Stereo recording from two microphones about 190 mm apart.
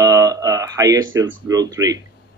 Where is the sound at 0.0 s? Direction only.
20° right (ahead or behind).